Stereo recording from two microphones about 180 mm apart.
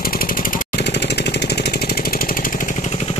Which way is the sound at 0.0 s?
55° left (ahead or behind).